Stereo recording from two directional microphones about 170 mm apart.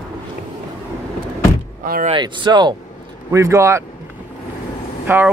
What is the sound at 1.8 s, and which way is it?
Speech, 60° right (ahead or behind).